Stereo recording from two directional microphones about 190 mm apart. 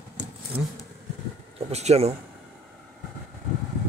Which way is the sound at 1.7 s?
35° right (ahead or behind).